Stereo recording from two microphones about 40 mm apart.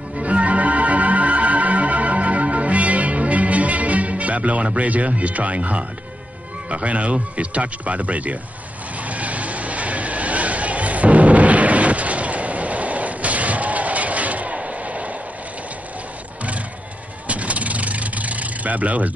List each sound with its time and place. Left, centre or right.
0.2 s music: right
6.7 s speech: right
9.0 s vehicle: right
17.3 s vehicle: right